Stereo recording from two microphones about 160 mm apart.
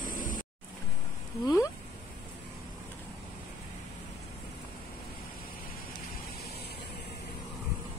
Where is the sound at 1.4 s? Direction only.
20° left (ahead or behind).